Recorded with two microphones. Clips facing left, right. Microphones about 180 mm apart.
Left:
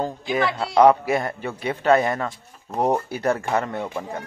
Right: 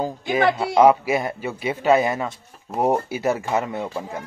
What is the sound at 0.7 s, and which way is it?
Speech, 5° right (ahead or behind).